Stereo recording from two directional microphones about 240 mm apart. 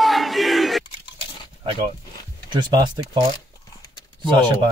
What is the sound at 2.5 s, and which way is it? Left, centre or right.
Speech, centre.